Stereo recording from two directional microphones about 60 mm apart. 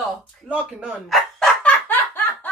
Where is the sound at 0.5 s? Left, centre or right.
Right.